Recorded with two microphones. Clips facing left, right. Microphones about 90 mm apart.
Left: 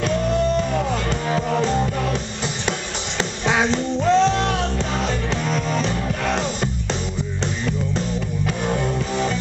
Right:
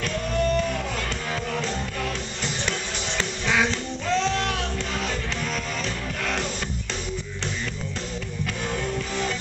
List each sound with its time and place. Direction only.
1.3 s music: 25° left (ahead or behind)
3.2 s music: 20° left (ahead or behind)
8.6 s music: 20° left (ahead or behind)